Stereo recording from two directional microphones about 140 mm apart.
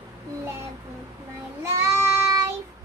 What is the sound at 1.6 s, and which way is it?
Child singing, 20° right (ahead or behind).